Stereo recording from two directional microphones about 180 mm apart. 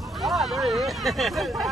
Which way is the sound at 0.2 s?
Centre (ahead or behind).